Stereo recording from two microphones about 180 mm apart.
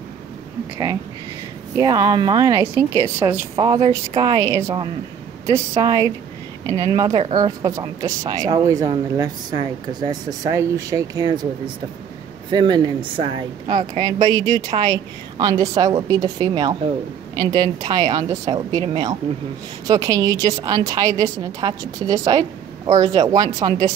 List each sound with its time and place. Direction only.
1.8 s a woman's voice: 20° right (ahead or behind)